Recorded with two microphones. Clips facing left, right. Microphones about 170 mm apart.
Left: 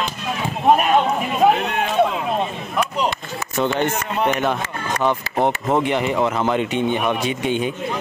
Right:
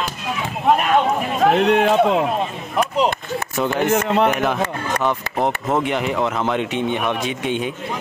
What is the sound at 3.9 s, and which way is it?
Speech, 80° right.